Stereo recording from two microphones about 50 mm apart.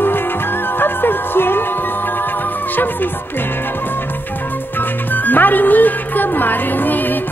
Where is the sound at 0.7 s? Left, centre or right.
Left.